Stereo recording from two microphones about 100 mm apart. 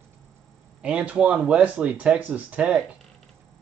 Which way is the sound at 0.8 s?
15° right (ahead or behind).